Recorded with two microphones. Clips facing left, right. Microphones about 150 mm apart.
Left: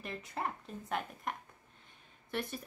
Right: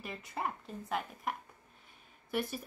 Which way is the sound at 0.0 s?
5° right (ahead or behind).